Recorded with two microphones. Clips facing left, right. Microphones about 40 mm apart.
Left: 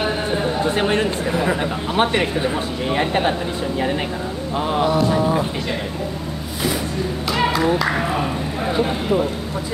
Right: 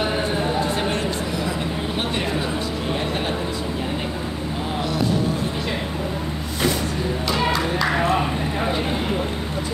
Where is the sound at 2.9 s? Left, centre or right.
Left.